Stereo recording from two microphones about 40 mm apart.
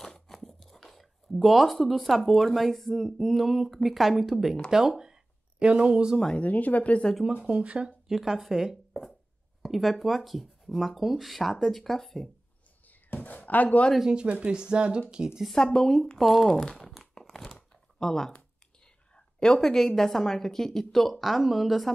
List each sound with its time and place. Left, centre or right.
0.0 s speech: centre
5.6 s speech: right
6.4 s speech: left
7.4 s speech: right
8.1 s speech: centre
13.1 s a sound: left
13.5 s speech: left
14.0 s speech: right
15.5 s a woman's voice: centre
16.5 s speech: centre
17.1 s crumpling: centre
17.6 s a sound: centre
19.1 s a woman's voice: centre